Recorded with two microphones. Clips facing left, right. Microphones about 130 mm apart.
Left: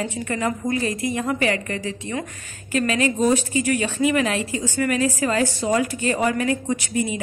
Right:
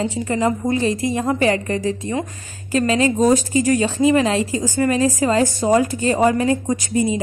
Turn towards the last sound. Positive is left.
turn(degrees=-25)  # may be behind; listen again after turning